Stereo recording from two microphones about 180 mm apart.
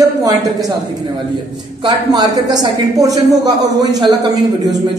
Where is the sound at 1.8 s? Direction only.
20° right (ahead or behind).